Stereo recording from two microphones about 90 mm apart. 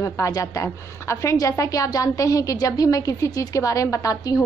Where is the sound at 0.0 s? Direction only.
40° left (ahead or behind).